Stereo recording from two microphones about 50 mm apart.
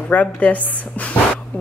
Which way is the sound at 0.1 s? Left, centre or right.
Left.